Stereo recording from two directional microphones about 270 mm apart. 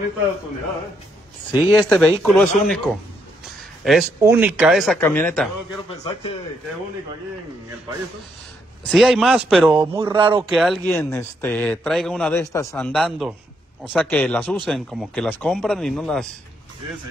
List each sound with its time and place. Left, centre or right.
1.5 s a man's voice: centre
8.8 s a man's voice: centre
9.7 s speech: centre
10.5 s a man's voice: centre